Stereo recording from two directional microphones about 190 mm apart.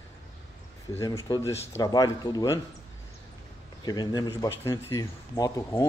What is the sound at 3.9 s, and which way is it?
Speech, 20° left (ahead or behind).